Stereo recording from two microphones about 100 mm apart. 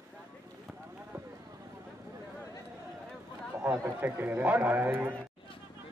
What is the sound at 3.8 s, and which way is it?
Speech, 20° right (ahead or behind).